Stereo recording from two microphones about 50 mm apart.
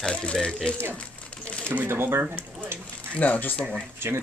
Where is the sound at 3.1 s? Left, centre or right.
Left.